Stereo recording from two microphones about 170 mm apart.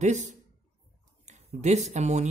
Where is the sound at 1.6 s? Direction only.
40° right (ahead or behind).